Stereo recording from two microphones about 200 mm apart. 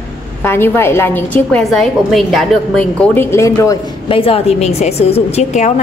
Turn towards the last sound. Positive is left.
turn(degrees=35)  # may be behind; listen again after turning